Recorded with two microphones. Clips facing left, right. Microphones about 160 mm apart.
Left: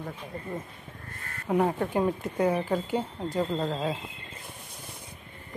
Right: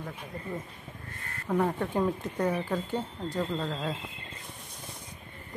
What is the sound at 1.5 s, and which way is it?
Speech, 15° left (ahead or behind).